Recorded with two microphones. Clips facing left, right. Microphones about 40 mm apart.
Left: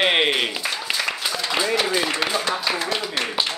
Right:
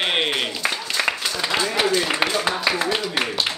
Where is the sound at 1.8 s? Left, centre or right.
Centre.